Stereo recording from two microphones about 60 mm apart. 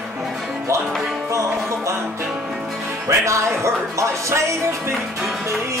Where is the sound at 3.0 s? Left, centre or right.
Right.